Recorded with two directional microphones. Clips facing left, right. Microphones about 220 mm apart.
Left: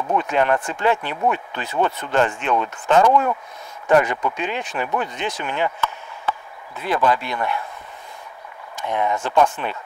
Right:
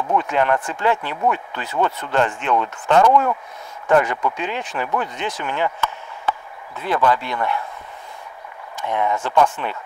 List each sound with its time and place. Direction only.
0.1 s speech: 20° left (ahead or behind)
6.8 s speech: 15° left (ahead or behind)
8.7 s speech: 15° left (ahead or behind)